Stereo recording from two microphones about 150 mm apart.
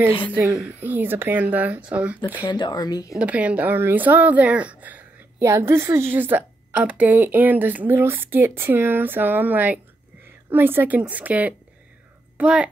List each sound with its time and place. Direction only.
0.3 s a woman's voice: 20° right (ahead or behind)
2.4 s speech: 30° left (ahead or behind)
3.1 s a woman's voice: 10° right (ahead or behind)